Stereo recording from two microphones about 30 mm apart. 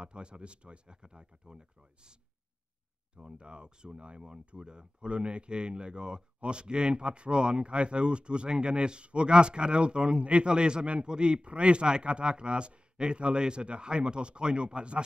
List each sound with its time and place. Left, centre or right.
0.0 s speech: right
3.2 s speech: right